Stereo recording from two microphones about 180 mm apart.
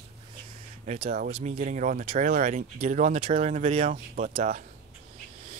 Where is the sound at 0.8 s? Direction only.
40° right (ahead or behind).